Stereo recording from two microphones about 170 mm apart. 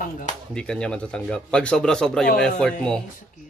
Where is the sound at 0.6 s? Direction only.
5° left (ahead or behind).